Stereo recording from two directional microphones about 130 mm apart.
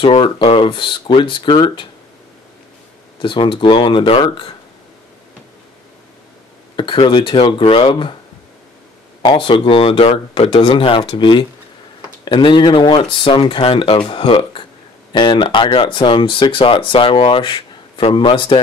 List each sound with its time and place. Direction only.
0.0 s speech: 45° left (ahead or behind)
3.2 s speech: 40° left (ahead or behind)
6.8 s speech: 40° left (ahead or behind)
9.2 s speech: 40° left (ahead or behind)